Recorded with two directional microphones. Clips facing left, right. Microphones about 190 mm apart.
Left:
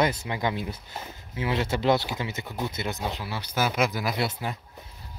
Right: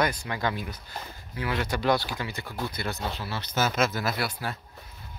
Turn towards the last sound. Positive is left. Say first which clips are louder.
# left 2 dB
turn(degrees=20)  # may be behind; listen again after turning